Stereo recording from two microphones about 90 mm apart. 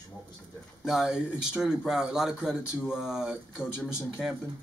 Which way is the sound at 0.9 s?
5° right (ahead or behind).